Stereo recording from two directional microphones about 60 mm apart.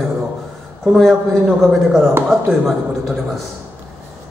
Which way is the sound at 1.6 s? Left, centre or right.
Centre.